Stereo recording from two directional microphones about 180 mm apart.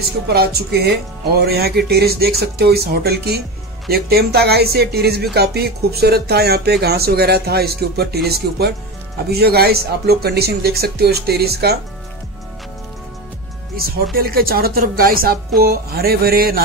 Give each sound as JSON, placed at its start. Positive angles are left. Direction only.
{"t": 0.3, "sound": "speech", "side_deg": -60}
{"t": 14.1, "sound": "speech", "side_deg": -55}